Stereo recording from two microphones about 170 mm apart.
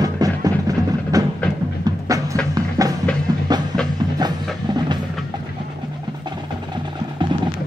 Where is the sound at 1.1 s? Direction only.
20° right (ahead or behind).